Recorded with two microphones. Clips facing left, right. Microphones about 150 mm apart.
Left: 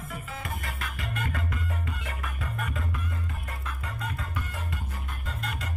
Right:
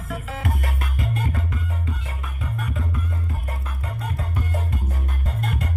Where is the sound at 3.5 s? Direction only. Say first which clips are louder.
Right 5 dB; 35° right (ahead or behind).